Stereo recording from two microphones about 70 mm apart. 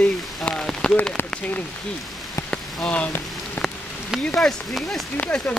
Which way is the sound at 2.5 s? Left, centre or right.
Centre.